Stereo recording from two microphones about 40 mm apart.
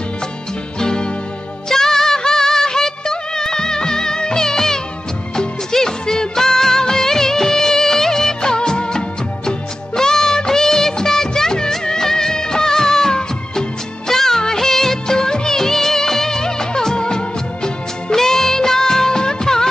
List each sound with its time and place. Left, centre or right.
0.7 s music: centre
1.7 s music of bollywood: centre
5.3 s music: centre
9.5 s music of bollywood: centre
18.1 s music of bollywood: centre